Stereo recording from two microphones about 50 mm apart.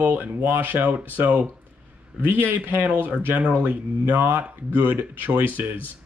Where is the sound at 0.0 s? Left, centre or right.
Right.